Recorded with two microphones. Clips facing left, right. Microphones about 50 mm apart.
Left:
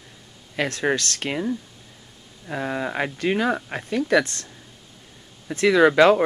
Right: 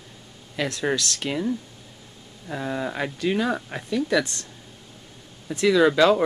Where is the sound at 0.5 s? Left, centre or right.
Left.